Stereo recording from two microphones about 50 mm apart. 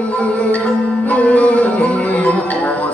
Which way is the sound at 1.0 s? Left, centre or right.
Left.